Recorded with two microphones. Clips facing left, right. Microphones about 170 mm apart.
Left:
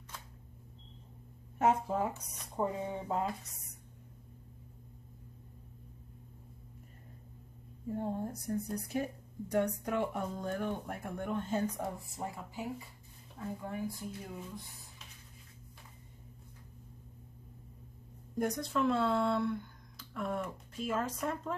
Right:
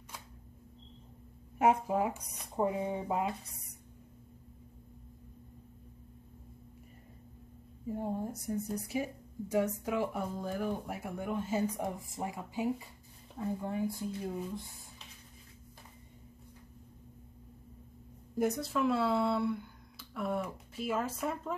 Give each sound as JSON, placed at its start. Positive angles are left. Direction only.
{"t": 1.6, "sound": "a woman's voice", "side_deg": -10}
{"t": 7.8, "sound": "a woman's voice", "side_deg": -10}
{"t": 18.3, "sound": "speech", "side_deg": -5}